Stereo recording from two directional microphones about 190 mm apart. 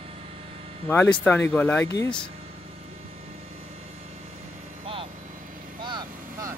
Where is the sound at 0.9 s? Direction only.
10° left (ahead or behind).